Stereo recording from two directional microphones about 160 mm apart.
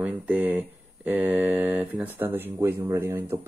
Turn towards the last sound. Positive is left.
turn(degrees=-15)  # may be behind; listen again after turning